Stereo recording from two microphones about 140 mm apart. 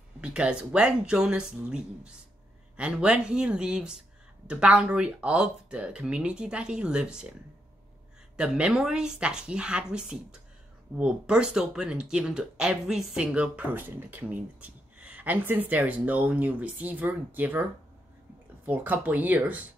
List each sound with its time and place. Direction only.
0.2 s speech: 10° right (ahead or behind)
8.4 s speech: 5° right (ahead or behind)
18.7 s speech: 10° right (ahead or behind)